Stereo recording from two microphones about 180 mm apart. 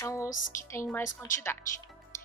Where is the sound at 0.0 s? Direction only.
15° left (ahead or behind).